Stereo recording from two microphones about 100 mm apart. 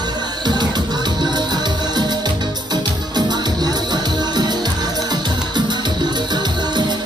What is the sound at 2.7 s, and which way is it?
Music, 45° right (ahead or behind).